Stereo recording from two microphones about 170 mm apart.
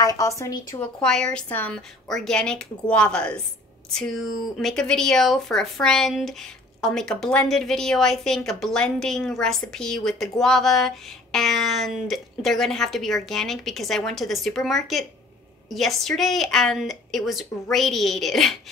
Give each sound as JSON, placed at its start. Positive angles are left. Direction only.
{"t": 0.0, "sound": "a woman's voice", "side_deg": 20}
{"t": 0.7, "sound": "speech", "side_deg": 5}